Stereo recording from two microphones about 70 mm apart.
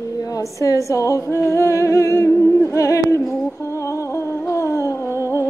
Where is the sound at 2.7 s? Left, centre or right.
Left.